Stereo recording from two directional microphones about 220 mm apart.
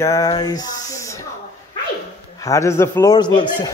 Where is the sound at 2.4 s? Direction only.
15° left (ahead or behind).